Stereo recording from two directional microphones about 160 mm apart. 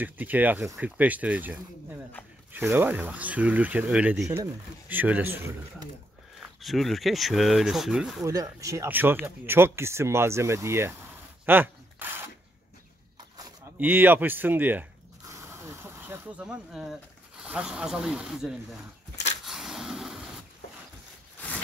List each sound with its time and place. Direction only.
0.0 s speech: 10° right (ahead or behind)
6.6 s speech: centre (ahead or behind)
8.3 s speech: 20° right (ahead or behind)
13.7 s speech: 10° right (ahead or behind)
19.4 s a sound: centre (ahead or behind)